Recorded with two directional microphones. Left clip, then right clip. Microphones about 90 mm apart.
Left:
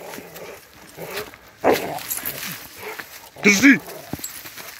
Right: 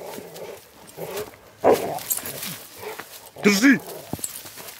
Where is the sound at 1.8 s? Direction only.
10° right (ahead or behind).